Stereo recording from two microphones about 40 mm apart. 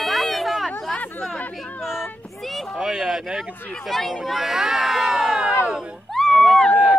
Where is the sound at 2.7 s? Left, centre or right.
Centre.